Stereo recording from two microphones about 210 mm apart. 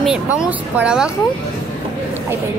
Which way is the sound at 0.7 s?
5° right (ahead or behind).